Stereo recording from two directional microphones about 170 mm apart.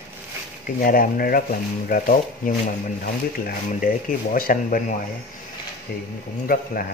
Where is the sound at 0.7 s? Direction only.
55° left (ahead or behind).